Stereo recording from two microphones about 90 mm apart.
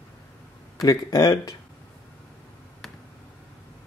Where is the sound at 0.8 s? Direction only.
45° left (ahead or behind).